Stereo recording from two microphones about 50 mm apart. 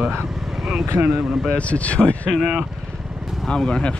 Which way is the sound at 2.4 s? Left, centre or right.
Centre.